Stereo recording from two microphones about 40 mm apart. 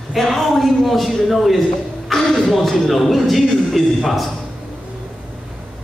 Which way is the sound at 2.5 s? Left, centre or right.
Centre.